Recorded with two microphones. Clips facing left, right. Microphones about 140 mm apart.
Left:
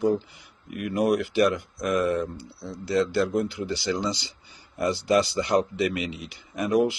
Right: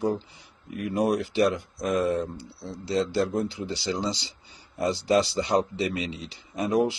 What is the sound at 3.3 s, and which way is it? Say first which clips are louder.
Speech: left 2 dB; 25° right (ahead or behind).